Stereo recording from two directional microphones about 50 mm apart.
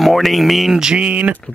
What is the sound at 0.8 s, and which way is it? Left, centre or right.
Speech, centre.